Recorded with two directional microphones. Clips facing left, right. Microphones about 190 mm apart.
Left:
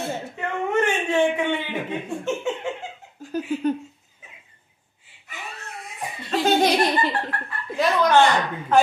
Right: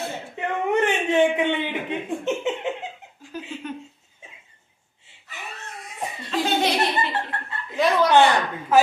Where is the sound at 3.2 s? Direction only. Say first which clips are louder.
Left 11 dB; 40° left (ahead or behind).